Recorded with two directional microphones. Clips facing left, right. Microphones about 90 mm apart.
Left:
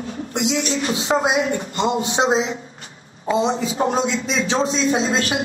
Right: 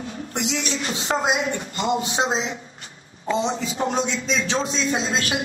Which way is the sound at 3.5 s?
35° left (ahead or behind).